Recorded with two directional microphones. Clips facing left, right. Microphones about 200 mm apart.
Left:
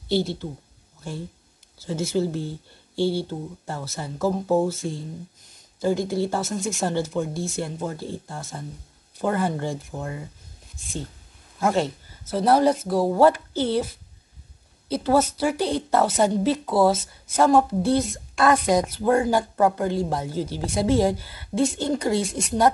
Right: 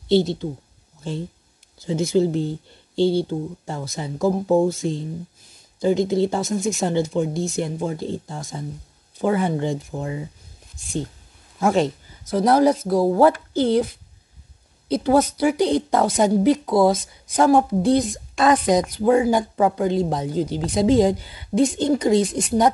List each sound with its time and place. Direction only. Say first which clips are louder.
0.1 s speech: right 6 dB; 20° right (ahead or behind)
1.8 s a woman's voice: right 5 dB; 15° right (ahead or behind)
5.8 s a woman's voice: right 4 dB; 20° right (ahead or behind)
11.6 s a woman's voice: right 3 dB; 15° right (ahead or behind)
14.9 s a woman's voice: right 3 dB; 15° right (ahead or behind)